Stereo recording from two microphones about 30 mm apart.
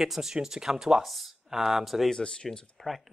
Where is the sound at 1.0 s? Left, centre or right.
Centre.